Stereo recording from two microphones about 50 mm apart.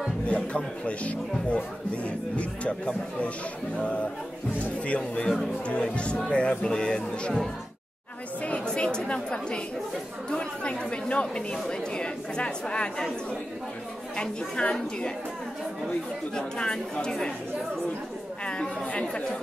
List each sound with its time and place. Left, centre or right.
0.3 s speech: left
8.6 s a woman's voice: centre
14.1 s speech: centre
18.4 s speech: centre